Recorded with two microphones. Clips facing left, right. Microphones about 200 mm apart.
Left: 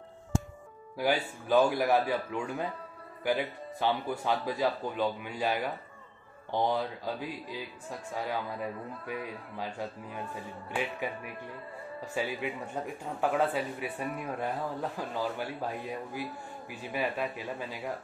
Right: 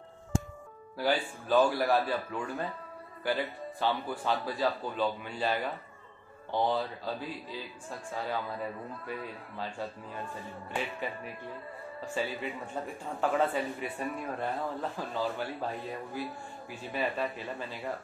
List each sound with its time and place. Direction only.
0.9 s speech: 15° left (ahead or behind)